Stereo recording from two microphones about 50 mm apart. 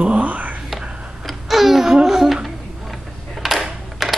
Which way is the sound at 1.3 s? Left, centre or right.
Centre.